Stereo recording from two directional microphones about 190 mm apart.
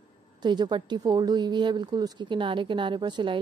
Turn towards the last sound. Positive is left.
turn(degrees=-25)  # may be behind; listen again after turning